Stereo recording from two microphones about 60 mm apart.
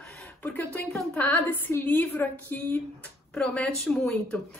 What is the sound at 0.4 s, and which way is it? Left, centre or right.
A woman's voice, left.